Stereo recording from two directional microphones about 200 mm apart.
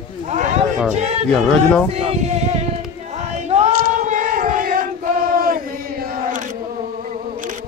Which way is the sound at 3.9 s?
40° right (ahead or behind).